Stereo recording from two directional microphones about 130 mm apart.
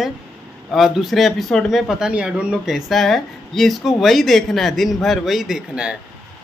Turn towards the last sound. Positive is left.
turn(degrees=-5)  # may be behind; listen again after turning